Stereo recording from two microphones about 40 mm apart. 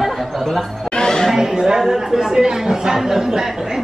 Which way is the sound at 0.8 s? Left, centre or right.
Centre.